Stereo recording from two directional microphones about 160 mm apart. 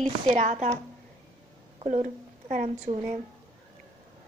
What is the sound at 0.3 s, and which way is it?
Speech, 50° right (ahead or behind).